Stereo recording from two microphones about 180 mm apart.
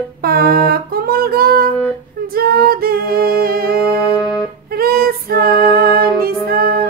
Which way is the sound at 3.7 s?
5° right (ahead or behind).